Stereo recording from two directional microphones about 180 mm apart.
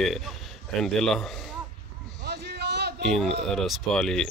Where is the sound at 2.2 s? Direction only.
65° right (ahead or behind).